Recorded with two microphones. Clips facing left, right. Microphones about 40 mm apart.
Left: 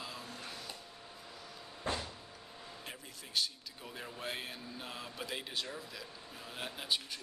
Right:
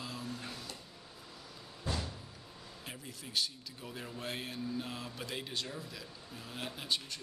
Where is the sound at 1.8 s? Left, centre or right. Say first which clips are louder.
Left 1 dB; left.